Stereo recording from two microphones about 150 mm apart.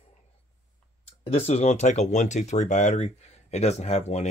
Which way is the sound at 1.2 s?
45° left (ahead or behind).